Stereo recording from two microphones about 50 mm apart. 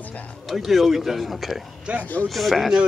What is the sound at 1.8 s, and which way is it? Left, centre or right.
Speech, right.